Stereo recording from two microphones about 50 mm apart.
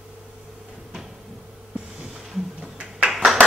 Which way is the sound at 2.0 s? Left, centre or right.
Centre.